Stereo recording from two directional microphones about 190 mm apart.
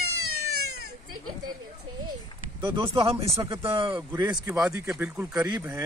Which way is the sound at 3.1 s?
15° right (ahead or behind).